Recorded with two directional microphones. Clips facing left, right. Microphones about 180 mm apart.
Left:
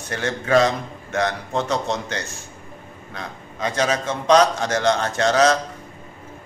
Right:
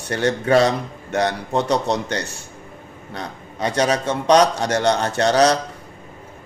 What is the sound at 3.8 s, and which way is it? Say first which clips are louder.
Speech: right 3 dB; 35° right (ahead or behind).